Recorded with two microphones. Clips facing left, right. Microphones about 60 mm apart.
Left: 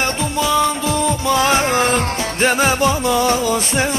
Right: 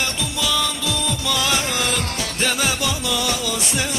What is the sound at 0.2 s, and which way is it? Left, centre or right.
Music, left.